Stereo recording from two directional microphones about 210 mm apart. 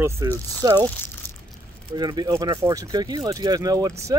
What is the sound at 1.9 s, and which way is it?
Speech, 20° right (ahead or behind).